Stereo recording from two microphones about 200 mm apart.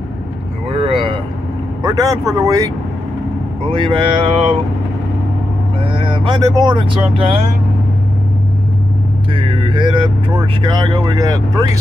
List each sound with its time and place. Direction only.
0.7 s vehicle: 30° right (ahead or behind)
1.8 s speech: 20° right (ahead or behind)
3.7 s speech: 25° right (ahead or behind)
5.9 s speech: 25° right (ahead or behind)
9.3 s vehicle: 25° right (ahead or behind)
10.4 s speech: 25° right (ahead or behind)